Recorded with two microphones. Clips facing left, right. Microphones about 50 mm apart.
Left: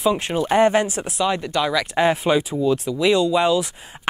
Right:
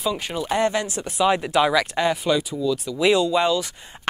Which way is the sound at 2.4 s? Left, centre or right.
Left.